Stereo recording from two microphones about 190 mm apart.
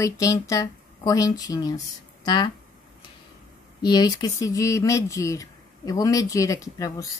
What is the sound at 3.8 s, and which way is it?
Speech, 20° left (ahead or behind).